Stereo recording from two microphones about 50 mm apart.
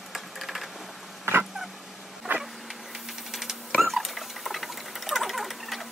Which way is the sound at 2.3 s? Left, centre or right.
Right.